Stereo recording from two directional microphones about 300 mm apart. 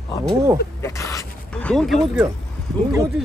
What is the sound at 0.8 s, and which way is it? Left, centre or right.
Speech, centre.